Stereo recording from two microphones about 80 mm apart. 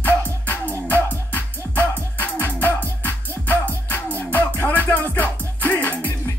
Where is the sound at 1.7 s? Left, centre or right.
Left.